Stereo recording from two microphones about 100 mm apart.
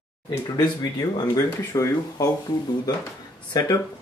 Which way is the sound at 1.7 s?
35° left (ahead or behind).